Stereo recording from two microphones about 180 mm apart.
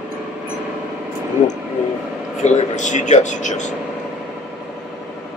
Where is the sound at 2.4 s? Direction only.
40° left (ahead or behind).